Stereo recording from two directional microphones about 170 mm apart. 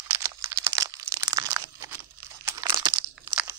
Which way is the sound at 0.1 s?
20° right (ahead or behind).